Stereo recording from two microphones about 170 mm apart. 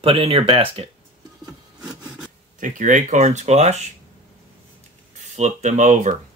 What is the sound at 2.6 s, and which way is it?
Speech, 50° right (ahead or behind).